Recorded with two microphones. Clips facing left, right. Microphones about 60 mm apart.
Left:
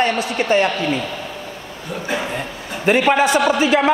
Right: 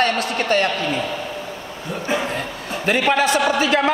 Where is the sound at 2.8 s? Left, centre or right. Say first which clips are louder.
Left 3 dB; centre.